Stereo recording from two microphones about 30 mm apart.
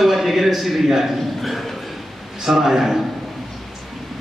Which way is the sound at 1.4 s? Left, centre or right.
Centre.